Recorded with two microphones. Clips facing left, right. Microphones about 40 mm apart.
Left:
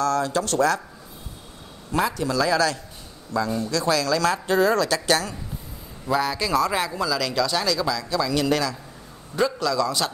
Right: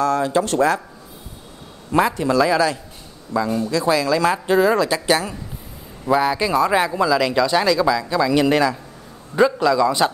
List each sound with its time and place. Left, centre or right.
0.0 s speech: right
1.9 s speech: right